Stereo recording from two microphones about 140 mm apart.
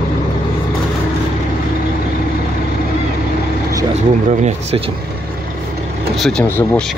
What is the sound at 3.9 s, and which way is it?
Speech, 55° right (ahead or behind).